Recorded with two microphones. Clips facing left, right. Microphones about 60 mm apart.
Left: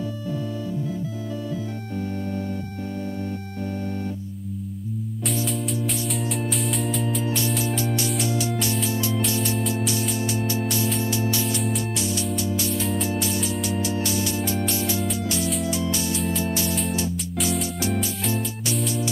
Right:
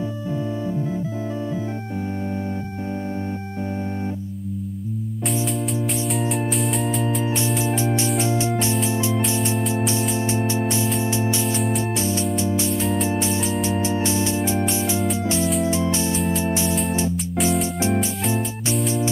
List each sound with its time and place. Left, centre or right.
6.2 s organ: centre
7.2 s organ: right
8.2 s music: right
8.8 s organ: right
10.1 s music: right
11.1 s organ: right
12.7 s organ: centre
13.1 s organ: right
16.2 s organ: centre
17.5 s music: right